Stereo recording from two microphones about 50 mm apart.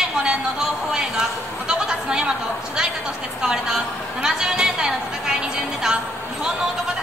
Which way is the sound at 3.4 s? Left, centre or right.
Centre.